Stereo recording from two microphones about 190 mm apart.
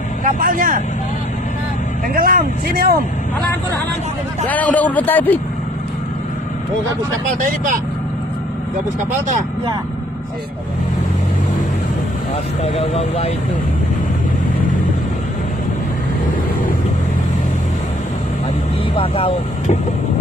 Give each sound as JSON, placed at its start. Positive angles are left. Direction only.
{"t": 0.2, "sound": "speech", "side_deg": -45}
{"t": 2.1, "sound": "speech", "side_deg": -50}
{"t": 4.5, "sound": "speech", "side_deg": 10}
{"t": 7.2, "sound": "speech", "side_deg": -45}
{"t": 12.6, "sound": "speech", "side_deg": 35}
{"t": 18.9, "sound": "speech", "side_deg": 30}